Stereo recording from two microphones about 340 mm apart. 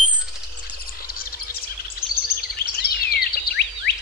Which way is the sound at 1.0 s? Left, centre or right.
Left.